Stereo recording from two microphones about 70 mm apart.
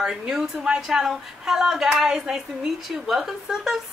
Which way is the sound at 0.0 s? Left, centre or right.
Centre.